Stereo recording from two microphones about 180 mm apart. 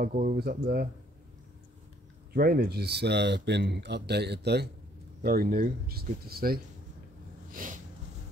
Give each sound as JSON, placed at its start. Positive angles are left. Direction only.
{"t": 0.0, "sound": "speech", "side_deg": -45}
{"t": 2.3, "sound": "speech", "side_deg": -55}
{"t": 7.5, "sound": "a sound", "side_deg": -45}